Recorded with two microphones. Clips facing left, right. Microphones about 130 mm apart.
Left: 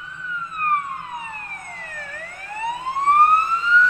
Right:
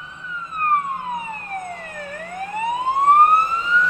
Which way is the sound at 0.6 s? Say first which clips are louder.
Right 3 dB; 25° right (ahead or behind).